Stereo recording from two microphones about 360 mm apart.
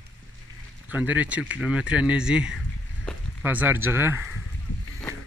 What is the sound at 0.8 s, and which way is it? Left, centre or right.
Speech, centre.